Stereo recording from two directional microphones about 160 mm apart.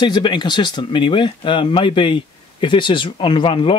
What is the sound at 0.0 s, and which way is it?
Speech, 30° left (ahead or behind).